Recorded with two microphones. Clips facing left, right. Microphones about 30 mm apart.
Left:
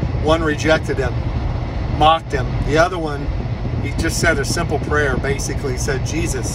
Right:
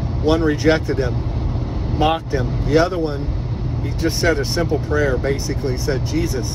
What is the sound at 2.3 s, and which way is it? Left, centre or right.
Speech, left.